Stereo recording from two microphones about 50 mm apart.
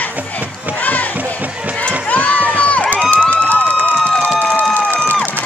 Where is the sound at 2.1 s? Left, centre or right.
Left.